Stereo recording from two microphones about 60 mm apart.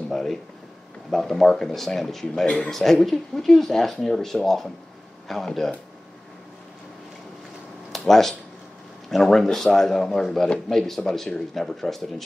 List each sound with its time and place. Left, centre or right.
0.1 s speech: centre
2.4 s speech: centre
2.7 s speech: centre
7.9 s speech: centre